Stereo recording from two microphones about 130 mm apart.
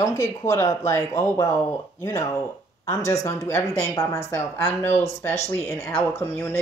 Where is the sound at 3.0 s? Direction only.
25° left (ahead or behind).